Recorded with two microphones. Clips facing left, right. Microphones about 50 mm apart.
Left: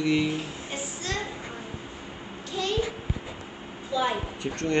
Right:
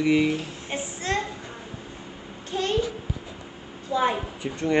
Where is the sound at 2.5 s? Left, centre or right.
Right.